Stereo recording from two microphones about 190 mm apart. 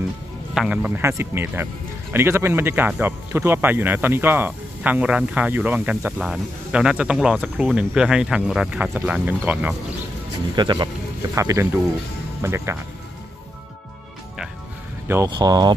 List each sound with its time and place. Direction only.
0.6 s speech: 5° right (ahead or behind)
10.5 s speech: 25° right (ahead or behind)
15.0 s speech: 20° right (ahead or behind)